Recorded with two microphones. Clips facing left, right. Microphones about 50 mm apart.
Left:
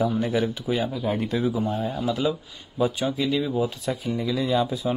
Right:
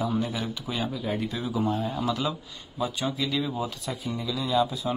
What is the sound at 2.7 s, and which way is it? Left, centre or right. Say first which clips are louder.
Speech: left 6 dB; left.